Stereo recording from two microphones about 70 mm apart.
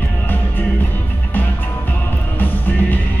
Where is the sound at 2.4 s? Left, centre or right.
Left.